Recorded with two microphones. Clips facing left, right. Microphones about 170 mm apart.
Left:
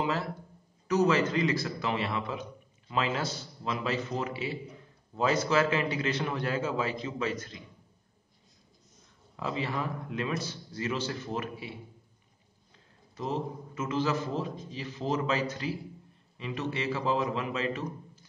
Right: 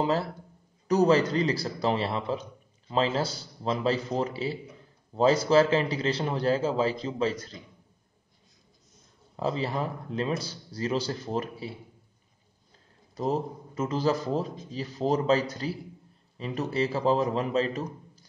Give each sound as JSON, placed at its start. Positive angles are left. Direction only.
{"t": 0.0, "sound": "a man's voice", "side_deg": -35}
{"t": 9.4, "sound": "a man's voice", "side_deg": -35}
{"t": 13.1, "sound": "a man's voice", "side_deg": -40}